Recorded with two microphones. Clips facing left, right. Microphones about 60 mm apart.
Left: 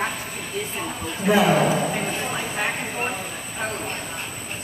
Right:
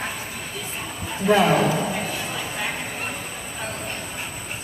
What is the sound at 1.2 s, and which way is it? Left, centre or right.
Speech, centre.